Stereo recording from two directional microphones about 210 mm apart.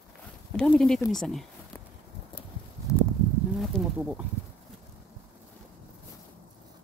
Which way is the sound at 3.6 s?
5° right (ahead or behind).